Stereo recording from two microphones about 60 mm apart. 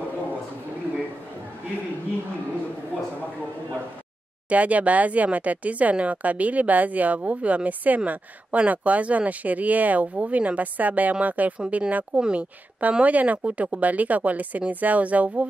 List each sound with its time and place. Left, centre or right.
4.5 s speech: right